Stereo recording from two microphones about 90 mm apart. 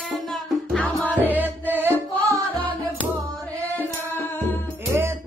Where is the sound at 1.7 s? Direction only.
25° right (ahead or behind).